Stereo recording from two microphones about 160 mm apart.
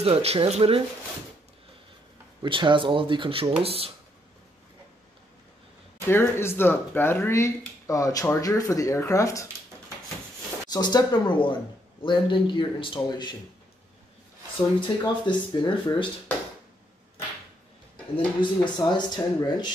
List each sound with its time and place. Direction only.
0.0 s speech: 40° right (ahead or behind)
2.4 s speech: 30° right (ahead or behind)
6.0 s speech: 15° left (ahead or behind)
10.7 s a man's voice: 25° left (ahead or behind)
14.8 s speech: 30° left (ahead or behind)
18.1 s speech: 30° left (ahead or behind)